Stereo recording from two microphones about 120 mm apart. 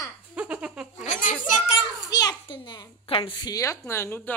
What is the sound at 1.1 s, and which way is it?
Speech, 90° left.